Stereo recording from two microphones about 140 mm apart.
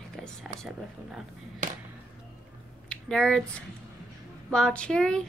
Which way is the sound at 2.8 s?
5° left (ahead or behind).